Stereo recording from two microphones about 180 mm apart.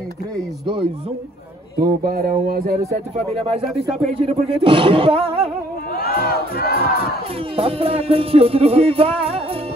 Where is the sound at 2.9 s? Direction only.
35° right (ahead or behind).